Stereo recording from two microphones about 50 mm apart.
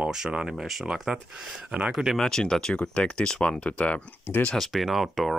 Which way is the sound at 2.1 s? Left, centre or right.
Centre.